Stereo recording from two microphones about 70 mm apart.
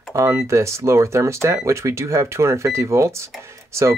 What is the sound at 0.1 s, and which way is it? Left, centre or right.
Speech, right.